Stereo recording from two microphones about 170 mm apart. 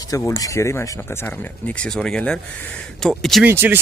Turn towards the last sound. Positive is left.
turn(degrees=-10)  # may be behind; listen again after turning